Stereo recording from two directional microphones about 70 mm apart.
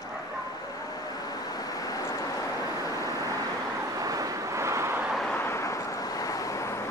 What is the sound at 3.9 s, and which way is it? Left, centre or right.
Vehicle, right.